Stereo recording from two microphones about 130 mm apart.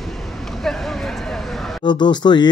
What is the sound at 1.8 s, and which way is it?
Speech, 35° left (ahead or behind).